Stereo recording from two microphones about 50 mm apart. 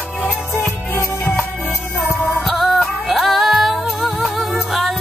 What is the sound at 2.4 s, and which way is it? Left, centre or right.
Music, centre.